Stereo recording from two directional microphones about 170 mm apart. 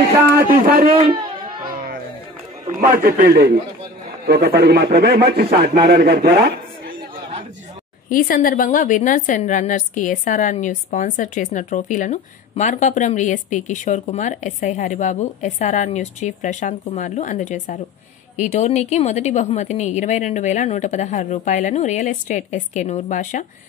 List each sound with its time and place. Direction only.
0.4 s a man's voice: 60° right (ahead or behind)
2.8 s a man's voice: 55° right (ahead or behind); by 7.0 s 75° right (ahead or behind)
8.1 s a woman's voice: 55° left (ahead or behind)